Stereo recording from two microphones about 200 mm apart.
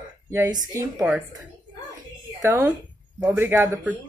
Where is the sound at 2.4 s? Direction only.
15° right (ahead or behind).